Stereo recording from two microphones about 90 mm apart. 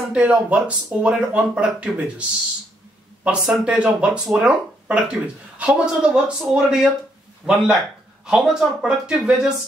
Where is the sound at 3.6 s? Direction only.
10° right (ahead or behind).